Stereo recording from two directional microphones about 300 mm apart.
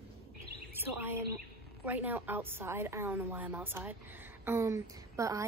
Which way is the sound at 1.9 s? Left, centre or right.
Centre.